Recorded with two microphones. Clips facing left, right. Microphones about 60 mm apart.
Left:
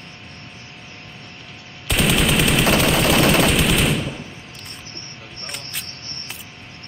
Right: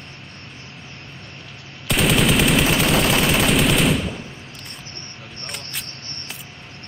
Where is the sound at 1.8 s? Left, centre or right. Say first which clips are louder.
Right 1 dB; centre.